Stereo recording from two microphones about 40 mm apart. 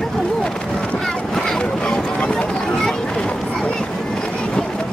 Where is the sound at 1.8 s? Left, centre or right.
Left.